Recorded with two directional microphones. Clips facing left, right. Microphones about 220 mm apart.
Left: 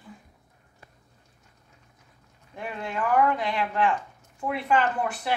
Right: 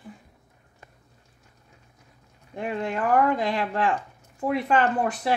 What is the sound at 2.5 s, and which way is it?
Speech, 35° right (ahead or behind).